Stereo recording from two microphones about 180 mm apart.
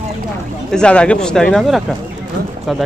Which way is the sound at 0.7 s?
5° left (ahead or behind).